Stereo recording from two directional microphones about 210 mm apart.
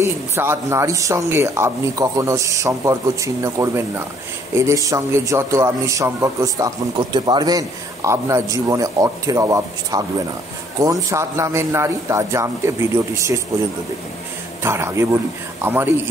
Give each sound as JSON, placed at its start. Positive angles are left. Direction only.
{"t": 0.0, "sound": "a man's voice", "side_deg": -10}
{"t": 14.6, "sound": "a man's voice", "side_deg": -10}